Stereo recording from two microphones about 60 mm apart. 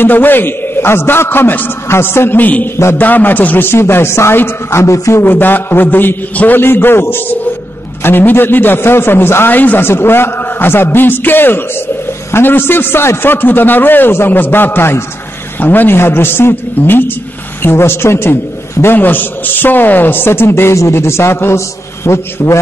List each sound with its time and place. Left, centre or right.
0.0 s a man's voice: left
3.7 s a man's voice: left
5.2 s a man's voice: left